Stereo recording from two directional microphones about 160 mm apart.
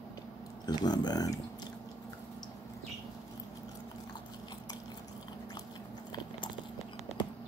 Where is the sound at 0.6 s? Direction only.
25° left (ahead or behind).